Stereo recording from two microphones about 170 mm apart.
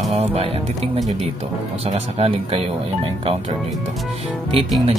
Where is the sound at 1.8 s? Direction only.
35° right (ahead or behind).